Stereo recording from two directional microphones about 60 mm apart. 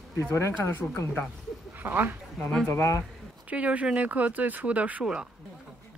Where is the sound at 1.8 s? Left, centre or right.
Right.